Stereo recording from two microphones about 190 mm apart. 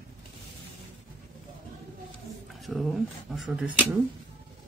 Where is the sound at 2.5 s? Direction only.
Centre (ahead or behind).